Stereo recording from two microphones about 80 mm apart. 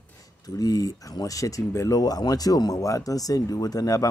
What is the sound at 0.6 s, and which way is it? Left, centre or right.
Speech, left.